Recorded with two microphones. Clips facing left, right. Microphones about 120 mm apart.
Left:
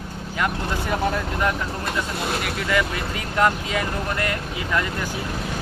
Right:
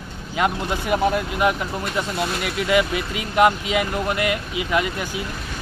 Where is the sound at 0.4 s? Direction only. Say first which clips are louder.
Right 3 dB; 15° right (ahead or behind).